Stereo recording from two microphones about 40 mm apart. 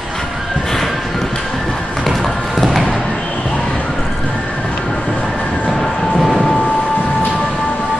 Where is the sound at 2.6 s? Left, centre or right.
Centre.